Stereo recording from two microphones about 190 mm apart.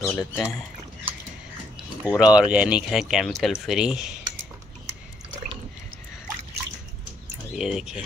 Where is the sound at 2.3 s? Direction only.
5° right (ahead or behind).